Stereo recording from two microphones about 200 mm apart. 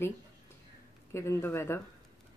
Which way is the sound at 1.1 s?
10° left (ahead or behind).